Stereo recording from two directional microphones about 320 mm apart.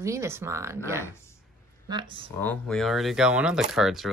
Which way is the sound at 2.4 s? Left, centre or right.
Centre.